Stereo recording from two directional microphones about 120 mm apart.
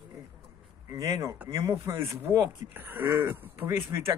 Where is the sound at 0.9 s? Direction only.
25° right (ahead or behind).